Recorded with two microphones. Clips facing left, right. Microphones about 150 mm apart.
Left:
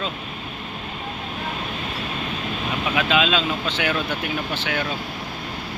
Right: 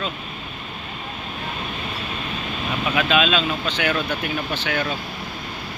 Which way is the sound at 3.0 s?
20° left (ahead or behind).